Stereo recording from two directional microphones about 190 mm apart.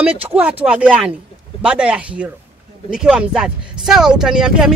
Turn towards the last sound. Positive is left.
turn(degrees=0)  # may be behind; listen again after turning